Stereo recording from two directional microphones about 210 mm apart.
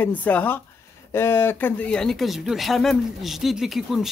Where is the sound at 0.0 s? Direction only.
10° left (ahead or behind).